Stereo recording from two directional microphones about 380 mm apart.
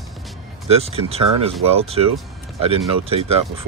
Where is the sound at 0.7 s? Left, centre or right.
Centre.